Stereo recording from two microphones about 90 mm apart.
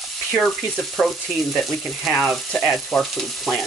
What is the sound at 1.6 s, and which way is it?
Frying, centre (ahead or behind).